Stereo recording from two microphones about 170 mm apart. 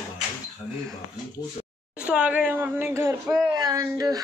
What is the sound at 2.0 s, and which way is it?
Speech, 5° right (ahead or behind).